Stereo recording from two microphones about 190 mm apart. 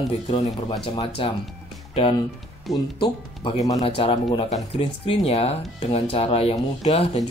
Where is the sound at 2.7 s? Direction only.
Centre (ahead or behind).